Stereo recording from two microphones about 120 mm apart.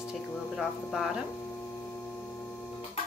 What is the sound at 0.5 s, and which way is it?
Speech, 5° right (ahead or behind).